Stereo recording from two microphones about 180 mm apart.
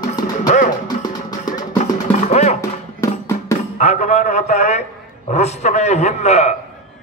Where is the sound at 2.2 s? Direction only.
40° left (ahead or behind).